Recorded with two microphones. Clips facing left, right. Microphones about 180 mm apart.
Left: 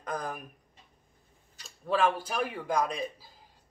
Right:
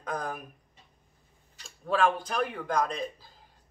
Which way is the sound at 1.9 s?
5° left (ahead or behind).